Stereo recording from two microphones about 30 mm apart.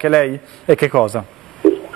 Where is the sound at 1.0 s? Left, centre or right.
Centre.